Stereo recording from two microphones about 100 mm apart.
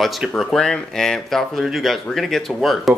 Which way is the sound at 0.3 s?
5° left (ahead or behind).